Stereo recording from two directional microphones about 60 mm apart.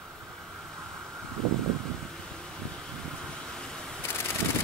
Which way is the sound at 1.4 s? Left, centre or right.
Centre.